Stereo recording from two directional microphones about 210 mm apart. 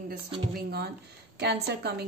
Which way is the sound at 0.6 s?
50° right (ahead or behind).